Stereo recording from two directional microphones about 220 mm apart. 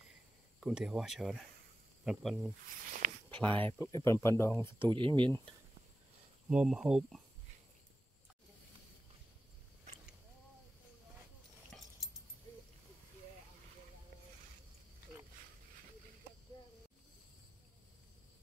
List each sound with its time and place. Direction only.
0.6 s speech: 5° right (ahead or behind)
4.8 s speech: 20° right (ahead or behind)
6.5 s speech: 5° right (ahead or behind)
11.7 s a sound: 5° left (ahead or behind)